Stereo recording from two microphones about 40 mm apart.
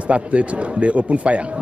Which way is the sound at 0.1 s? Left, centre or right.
Right.